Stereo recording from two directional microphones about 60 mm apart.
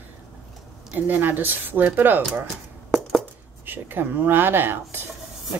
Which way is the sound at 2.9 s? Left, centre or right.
Centre.